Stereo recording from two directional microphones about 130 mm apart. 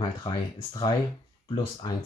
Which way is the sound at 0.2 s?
40° left (ahead or behind).